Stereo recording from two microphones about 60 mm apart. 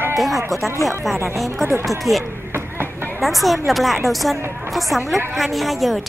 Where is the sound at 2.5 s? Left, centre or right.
Right.